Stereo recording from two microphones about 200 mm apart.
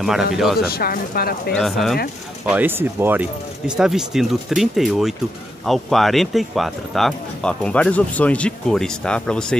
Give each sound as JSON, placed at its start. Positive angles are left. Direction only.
{"t": 0.0, "sound": "speech", "side_deg": 0}
{"t": 0.7, "sound": "speech", "side_deg": 50}
{"t": 1.5, "sound": "speech", "side_deg": 0}